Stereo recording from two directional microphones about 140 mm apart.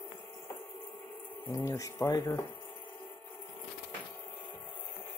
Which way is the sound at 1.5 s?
25° left (ahead or behind).